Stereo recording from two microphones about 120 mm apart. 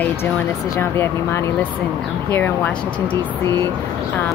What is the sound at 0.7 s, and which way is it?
Speech, 20° left (ahead or behind).